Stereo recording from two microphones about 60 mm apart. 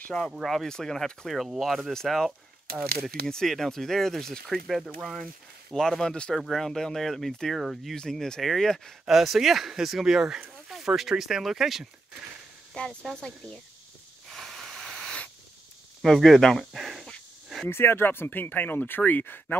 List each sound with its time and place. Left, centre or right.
0.0 s speech: centre
0.4 s speech: centre
7.9 s speech: centre
13.0 s speech: centre
14.3 s hiss: centre
16.0 s speech: centre
17.6 s speech: left